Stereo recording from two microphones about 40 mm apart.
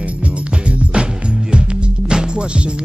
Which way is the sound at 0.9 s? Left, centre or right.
Right.